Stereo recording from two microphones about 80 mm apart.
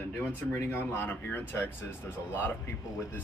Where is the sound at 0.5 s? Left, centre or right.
Left.